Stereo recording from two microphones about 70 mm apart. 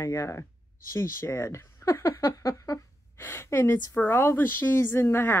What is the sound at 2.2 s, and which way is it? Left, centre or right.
Speech, left.